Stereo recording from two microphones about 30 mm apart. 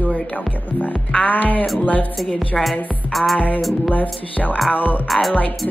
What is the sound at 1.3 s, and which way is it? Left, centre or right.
Music, left.